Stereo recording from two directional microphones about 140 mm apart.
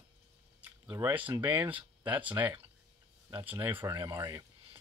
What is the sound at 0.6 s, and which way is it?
Speech, 10° right (ahead or behind).